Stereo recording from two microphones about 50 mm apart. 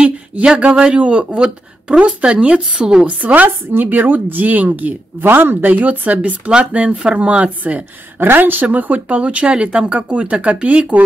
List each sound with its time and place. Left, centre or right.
0.0 s speech: right
3.2 s speech: right
5.7 s speech: right
8.2 s speech: right